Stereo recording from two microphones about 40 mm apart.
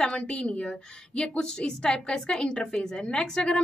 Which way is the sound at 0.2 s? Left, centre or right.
Left.